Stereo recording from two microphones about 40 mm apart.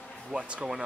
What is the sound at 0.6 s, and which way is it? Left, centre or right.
Speech, right.